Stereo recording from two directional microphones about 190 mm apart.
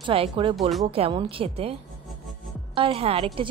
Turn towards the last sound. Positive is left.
turn(degrees=-30)  # may be behind; listen again after turning